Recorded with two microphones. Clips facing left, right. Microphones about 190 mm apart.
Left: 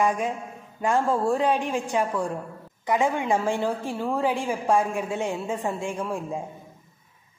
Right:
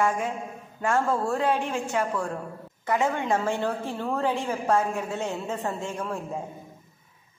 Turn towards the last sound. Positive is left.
turn(degrees=10)  # may be behind; listen again after turning